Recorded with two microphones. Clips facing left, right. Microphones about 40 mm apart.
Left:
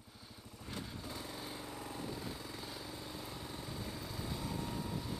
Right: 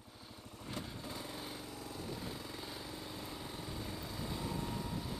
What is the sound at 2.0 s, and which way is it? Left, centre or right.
Vehicle, centre.